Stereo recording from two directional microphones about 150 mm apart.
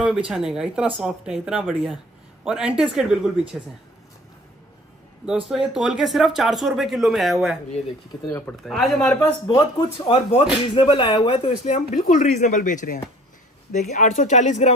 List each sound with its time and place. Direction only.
0.3 s speech: 5° right (ahead or behind)
5.2 s speech: 5° right (ahead or behind)
8.3 s speech: 15° left (ahead or behind)
8.6 s speech: centre (ahead or behind)
9.5 s speech: 30° left (ahead or behind); by 14.7 s 50° left (ahead or behind)